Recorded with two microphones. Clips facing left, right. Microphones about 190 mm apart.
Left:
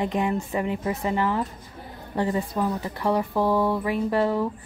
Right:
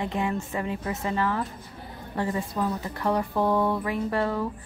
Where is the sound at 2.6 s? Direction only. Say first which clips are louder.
Left 2 dB; 10° left (ahead or behind).